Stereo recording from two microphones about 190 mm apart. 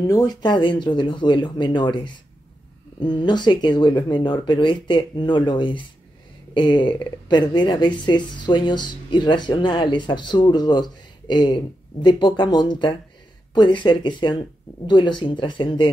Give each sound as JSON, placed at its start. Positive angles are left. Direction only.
{"t": 0.0, "sound": "a woman's voice", "side_deg": 20}
{"t": 3.0, "sound": "a woman's voice", "side_deg": 25}